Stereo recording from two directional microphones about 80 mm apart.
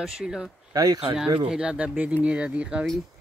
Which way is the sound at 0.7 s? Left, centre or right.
Right.